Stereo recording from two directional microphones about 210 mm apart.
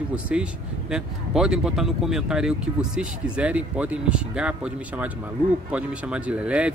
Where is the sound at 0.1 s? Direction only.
5° right (ahead or behind).